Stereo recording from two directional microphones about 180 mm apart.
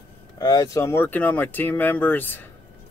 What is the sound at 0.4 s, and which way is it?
Speech, 20° left (ahead or behind).